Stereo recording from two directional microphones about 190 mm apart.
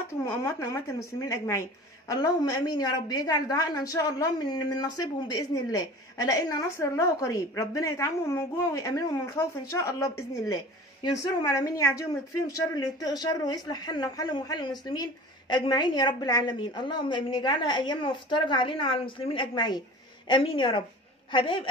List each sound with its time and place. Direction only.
0.2 s a woman's voice: 15° left (ahead or behind)